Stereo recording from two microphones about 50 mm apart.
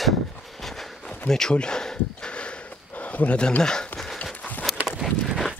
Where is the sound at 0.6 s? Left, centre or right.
Centre.